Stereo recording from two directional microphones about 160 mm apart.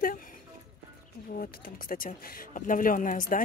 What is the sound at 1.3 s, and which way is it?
Speech, 65° left (ahead or behind).